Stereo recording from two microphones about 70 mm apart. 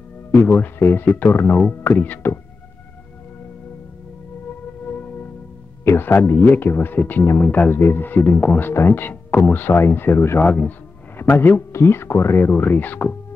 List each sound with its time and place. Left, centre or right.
0.3 s speech: left
4.8 s music: left
5.9 s speech: left
10.4 s speech: left